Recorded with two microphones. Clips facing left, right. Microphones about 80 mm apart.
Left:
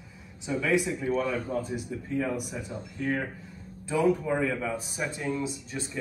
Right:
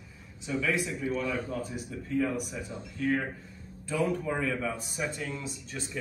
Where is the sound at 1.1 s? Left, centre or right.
Left.